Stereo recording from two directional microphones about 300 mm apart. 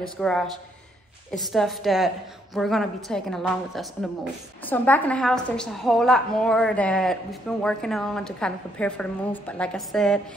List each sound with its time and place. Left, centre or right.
0.2 s a woman's voice: centre